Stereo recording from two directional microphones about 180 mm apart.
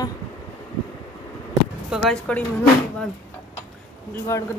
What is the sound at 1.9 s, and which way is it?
Speech, centre (ahead or behind).